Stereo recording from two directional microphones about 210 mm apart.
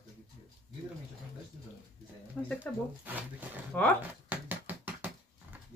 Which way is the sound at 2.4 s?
5° left (ahead or behind).